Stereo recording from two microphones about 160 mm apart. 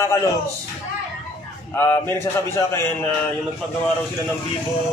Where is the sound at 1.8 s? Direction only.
15° left (ahead or behind).